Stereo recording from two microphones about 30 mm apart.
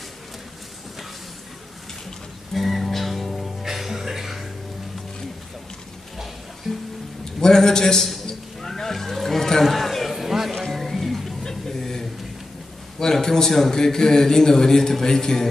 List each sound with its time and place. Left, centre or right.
2.5 s music: centre
3.6 s music: centre
6.7 s music: centre
7.3 s a man's voice: centre
8.5 s a sound: centre
10.1 s a sound: centre
10.7 s music: centre
11.4 s a sound: centre
13.5 s a man's voice: centre